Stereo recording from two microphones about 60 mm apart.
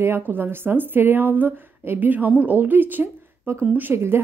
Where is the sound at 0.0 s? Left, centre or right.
Right.